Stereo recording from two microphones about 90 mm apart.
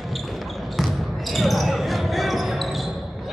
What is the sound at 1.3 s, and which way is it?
Basketball bounce, centre (ahead or behind).